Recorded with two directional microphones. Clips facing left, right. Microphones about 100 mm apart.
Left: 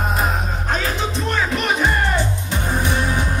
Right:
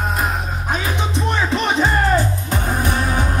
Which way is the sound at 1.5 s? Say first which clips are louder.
Right 3 dB; 25° right (ahead or behind).